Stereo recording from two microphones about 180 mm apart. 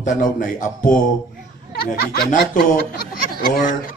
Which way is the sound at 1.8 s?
60° left (ahead or behind).